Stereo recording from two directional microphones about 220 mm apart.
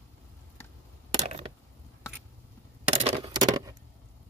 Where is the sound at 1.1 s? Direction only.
30° right (ahead or behind).